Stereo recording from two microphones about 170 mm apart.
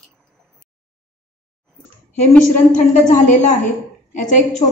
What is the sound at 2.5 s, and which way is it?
A woman's voice, 50° left (ahead or behind).